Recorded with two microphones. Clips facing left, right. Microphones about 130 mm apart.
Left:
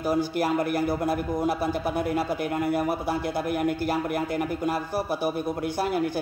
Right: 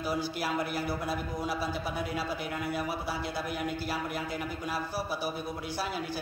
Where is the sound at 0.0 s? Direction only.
50° left (ahead or behind).